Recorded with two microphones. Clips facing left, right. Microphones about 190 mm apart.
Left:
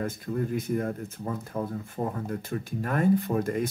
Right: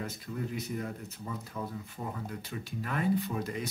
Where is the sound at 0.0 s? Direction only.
50° left (ahead or behind).